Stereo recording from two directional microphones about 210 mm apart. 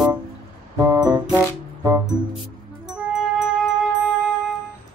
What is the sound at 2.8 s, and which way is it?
Music, centre (ahead or behind).